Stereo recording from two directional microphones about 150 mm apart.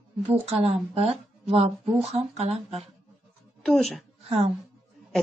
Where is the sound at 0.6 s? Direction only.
45° right (ahead or behind).